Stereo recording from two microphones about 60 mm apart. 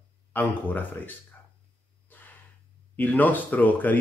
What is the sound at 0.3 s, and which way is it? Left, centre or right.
Speech, left.